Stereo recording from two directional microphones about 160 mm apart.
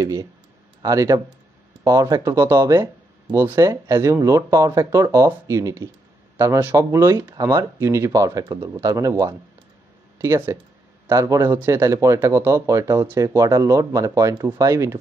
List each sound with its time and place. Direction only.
0.0 s speech: 20° right (ahead or behind)